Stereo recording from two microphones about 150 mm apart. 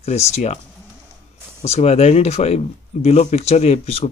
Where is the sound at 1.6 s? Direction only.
45° left (ahead or behind).